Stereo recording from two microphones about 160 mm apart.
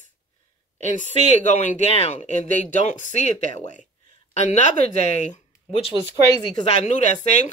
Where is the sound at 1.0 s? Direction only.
45° right (ahead or behind).